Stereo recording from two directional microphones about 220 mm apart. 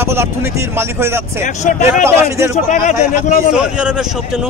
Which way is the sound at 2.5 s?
35° left (ahead or behind).